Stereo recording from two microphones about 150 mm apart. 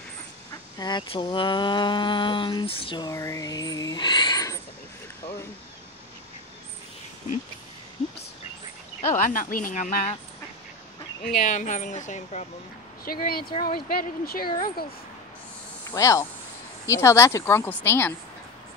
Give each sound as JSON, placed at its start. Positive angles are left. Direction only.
{"t": 0.7, "sound": "speech", "side_deg": 30}
{"t": 3.0, "sound": "speech", "side_deg": 20}
{"t": 9.1, "sound": "a woman's voice", "side_deg": 65}
{"t": 11.4, "sound": "a woman's voice", "side_deg": 60}
{"t": 13.0, "sound": "speech", "side_deg": 85}
{"t": 13.5, "sound": "speech", "side_deg": 30}
{"t": 13.7, "sound": "speech", "side_deg": 85}
{"t": 15.9, "sound": "speech", "side_deg": 20}